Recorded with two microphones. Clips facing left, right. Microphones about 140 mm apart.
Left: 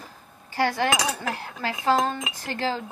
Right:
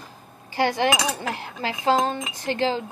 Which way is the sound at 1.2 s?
25° right (ahead or behind).